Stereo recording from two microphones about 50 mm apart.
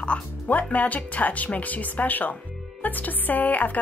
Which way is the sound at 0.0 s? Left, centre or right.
Left.